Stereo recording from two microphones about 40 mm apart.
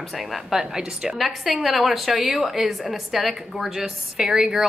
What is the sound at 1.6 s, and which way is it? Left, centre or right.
A woman's voice, centre.